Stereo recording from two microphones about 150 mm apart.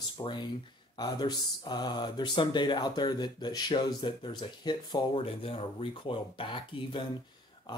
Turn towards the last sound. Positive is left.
turn(degrees=35)  # may be behind; listen again after turning